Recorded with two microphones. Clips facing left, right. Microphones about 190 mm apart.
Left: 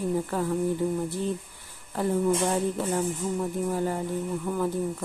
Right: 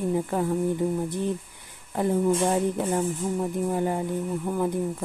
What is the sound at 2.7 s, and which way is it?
Music, 15° right (ahead or behind).